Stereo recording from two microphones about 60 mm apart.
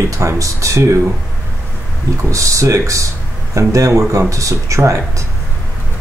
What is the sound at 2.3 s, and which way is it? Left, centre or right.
Speech, right.